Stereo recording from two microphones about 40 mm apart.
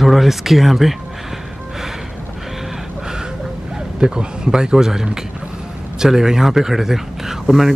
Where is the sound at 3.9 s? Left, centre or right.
Centre.